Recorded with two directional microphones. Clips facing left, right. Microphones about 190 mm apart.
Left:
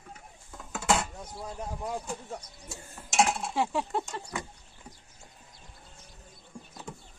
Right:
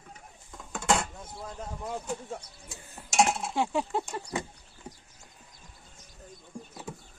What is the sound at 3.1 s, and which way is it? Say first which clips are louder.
Cutlery: right 1 dB; centre (ahead or behind).